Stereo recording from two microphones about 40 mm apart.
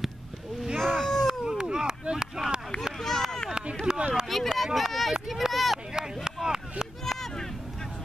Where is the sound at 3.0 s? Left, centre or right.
Centre.